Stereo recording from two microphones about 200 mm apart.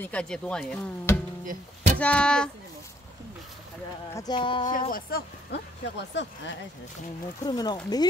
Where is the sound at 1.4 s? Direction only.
40° right (ahead or behind).